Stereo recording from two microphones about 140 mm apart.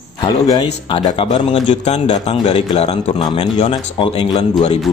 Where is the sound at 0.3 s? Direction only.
30° left (ahead or behind).